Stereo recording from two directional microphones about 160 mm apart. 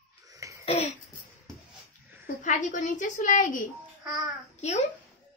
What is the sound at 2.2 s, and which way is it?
A woman's voice, 55° left (ahead or behind).